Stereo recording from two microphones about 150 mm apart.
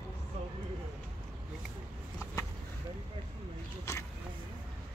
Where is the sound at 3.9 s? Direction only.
20° left (ahead or behind).